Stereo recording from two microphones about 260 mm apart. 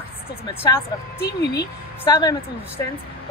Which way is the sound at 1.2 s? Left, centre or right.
Left.